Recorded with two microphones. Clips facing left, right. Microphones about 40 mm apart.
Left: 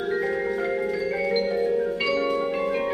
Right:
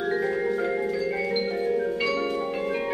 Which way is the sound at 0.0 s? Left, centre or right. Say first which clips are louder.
Even; centre.